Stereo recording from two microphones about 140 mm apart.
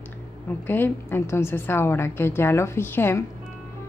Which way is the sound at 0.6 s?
15° left (ahead or behind).